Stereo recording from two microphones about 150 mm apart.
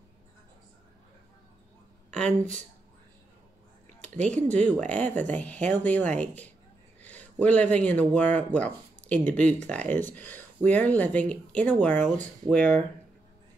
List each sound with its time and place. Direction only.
2.0 s speech: 5° left (ahead or behind)
4.2 s speech: 50° right (ahead or behind)
4.5 s a man's voice: 10° left (ahead or behind)